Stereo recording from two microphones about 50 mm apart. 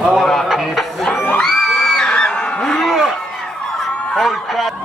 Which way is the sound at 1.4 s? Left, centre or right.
Centre.